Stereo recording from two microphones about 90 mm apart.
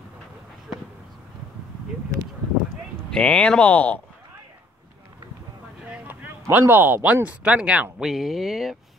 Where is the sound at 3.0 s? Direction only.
10° left (ahead or behind).